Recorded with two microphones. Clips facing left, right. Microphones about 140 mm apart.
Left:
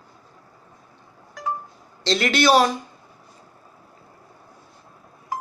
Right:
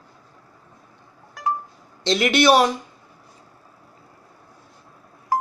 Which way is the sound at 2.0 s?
20° right (ahead or behind).